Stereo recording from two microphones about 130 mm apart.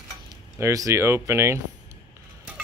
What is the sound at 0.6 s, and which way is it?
Speech, 25° right (ahead or behind).